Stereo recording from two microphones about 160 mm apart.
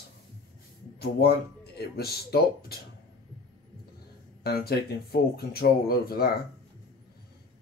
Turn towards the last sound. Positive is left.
turn(degrees=70)  # may be behind; listen again after turning